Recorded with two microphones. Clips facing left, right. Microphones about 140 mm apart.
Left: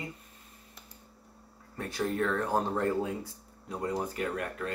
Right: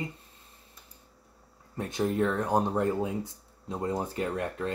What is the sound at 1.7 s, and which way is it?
Speech, 20° right (ahead or behind).